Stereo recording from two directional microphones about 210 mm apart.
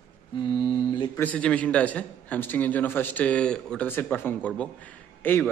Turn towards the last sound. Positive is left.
turn(degrees=10)  # may be behind; listen again after turning